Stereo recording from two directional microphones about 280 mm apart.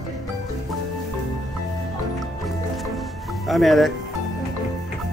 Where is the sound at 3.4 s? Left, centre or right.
Centre.